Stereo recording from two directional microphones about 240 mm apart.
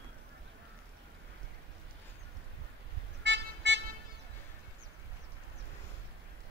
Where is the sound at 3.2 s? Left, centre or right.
Right.